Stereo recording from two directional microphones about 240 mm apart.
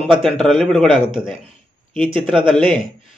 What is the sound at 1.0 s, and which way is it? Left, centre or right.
Speech, centre.